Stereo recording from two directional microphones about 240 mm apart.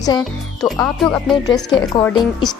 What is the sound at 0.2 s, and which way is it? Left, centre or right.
Speech, centre.